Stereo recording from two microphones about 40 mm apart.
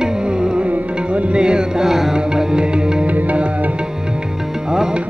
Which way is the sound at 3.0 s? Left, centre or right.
Right.